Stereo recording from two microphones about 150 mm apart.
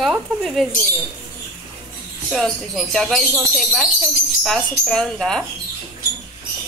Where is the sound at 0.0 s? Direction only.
Centre (ahead or behind).